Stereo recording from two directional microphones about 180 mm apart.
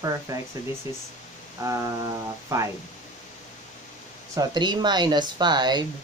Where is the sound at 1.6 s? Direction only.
15° right (ahead or behind).